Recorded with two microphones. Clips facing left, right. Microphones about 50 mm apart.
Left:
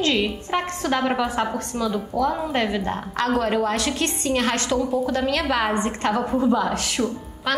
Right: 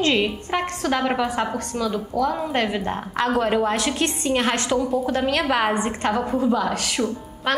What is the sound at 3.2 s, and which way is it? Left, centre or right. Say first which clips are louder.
A woman's voice: right 1 dB; right.